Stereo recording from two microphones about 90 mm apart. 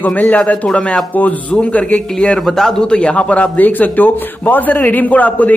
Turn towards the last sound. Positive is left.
turn(degrees=20)  # may be behind; listen again after turning